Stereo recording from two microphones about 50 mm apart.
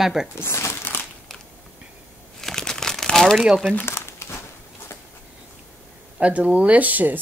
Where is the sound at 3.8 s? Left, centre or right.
Left.